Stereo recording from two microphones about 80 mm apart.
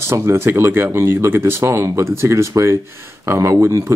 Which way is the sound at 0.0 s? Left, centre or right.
Right.